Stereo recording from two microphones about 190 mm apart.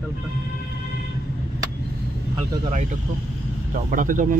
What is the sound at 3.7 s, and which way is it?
Speech, 45° right (ahead or behind).